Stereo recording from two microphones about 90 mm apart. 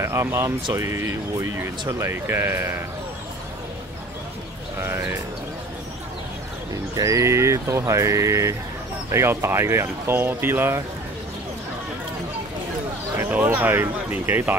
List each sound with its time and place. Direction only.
0.0 s speech: 30° right (ahead or behind)
4.7 s speech: 25° right (ahead or behind)
7.0 s speech: 35° right (ahead or behind)
13.2 s speech: 20° right (ahead or behind)